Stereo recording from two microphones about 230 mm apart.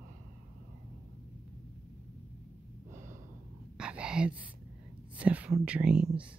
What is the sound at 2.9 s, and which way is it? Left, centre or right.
Gasp, right.